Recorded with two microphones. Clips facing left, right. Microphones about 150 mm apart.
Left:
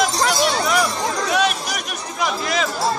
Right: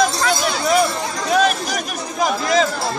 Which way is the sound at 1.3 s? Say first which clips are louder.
Right 6 dB; 45° right (ahead or behind).